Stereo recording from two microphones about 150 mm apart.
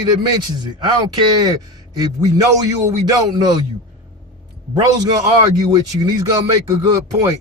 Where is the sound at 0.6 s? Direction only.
25° right (ahead or behind).